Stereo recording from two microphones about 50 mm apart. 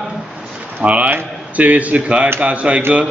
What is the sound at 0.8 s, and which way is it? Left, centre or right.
A man's voice, right.